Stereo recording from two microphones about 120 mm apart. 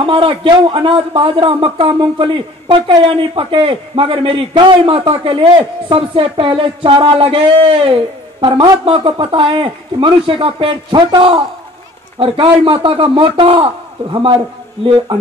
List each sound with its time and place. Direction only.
0.0 s a man's voice: 45° right (ahead or behind)